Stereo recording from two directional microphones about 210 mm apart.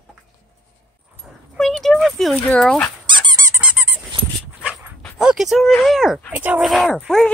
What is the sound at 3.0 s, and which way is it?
Squeak, 20° right (ahead or behind).